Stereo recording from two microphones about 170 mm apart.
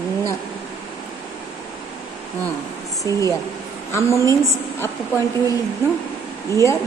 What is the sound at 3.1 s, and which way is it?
Speech, 20° left (ahead or behind).